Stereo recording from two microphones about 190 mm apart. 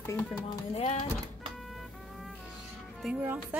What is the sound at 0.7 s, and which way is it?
Speech, 35° left (ahead or behind).